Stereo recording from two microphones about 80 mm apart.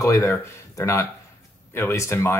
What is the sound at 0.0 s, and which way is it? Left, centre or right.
Speech, left.